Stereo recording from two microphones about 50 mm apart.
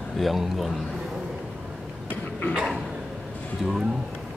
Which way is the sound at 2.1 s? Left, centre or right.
Left.